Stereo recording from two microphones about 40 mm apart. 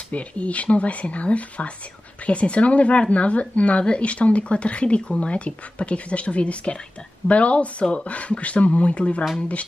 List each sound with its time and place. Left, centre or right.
0.1 s speech: left